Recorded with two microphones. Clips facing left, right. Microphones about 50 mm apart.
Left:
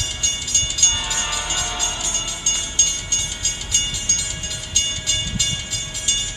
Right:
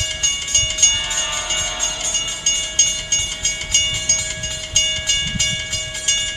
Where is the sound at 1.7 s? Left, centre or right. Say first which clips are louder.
Right 1 dB; right.